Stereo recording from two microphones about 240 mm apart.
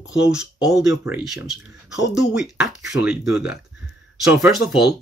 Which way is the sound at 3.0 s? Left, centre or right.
Centre.